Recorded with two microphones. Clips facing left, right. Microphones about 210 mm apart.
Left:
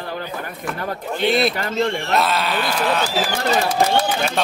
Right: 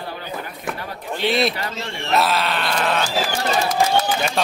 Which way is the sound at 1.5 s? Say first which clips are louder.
Left 7 dB; 50° left (ahead or behind).